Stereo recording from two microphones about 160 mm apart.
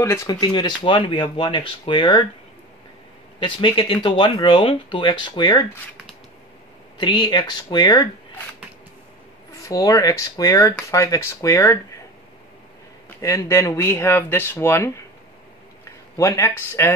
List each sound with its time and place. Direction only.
0.0 s speech: 20° left (ahead or behind)
3.3 s speech: 30° left (ahead or behind)
7.0 s speech: 25° left (ahead or behind)
9.7 s speech: 20° left (ahead or behind)
13.2 s speech: 20° left (ahead or behind)